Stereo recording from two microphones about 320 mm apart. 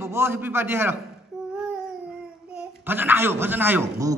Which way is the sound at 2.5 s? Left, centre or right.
Centre.